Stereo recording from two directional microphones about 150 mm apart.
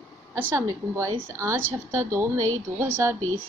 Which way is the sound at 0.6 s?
20° right (ahead or behind).